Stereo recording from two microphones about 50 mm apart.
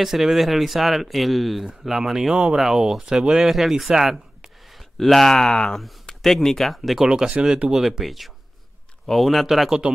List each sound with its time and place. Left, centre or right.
0.0 s speech: centre
7.1 s speech: centre
7.7 s speech: centre